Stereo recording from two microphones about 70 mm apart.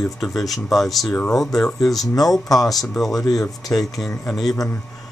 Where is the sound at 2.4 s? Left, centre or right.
Left.